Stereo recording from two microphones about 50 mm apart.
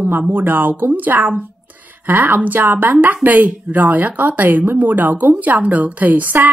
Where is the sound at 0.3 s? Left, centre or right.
Right.